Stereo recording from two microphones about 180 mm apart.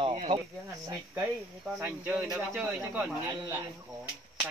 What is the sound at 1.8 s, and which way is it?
Speech, 10° right (ahead or behind).